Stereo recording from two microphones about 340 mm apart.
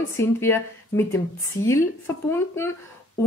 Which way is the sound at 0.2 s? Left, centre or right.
Centre.